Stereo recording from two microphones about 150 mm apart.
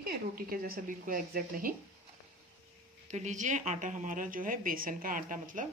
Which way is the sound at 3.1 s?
50° right (ahead or behind).